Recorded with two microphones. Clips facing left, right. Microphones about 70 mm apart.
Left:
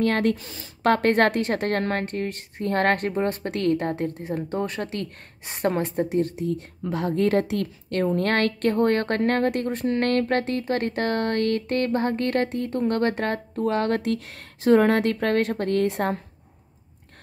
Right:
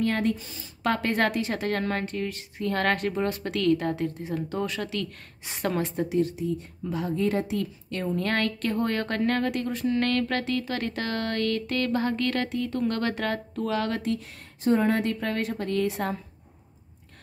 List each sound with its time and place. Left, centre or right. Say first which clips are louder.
0.0 s a woman's voice: left 4 dB; left
6.3 s a woman's voice: left 2 dB; left
8.0 s a woman's voice: left 5 dB; left